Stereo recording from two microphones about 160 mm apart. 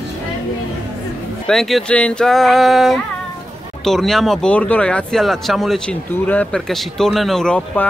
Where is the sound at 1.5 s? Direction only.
Centre (ahead or behind).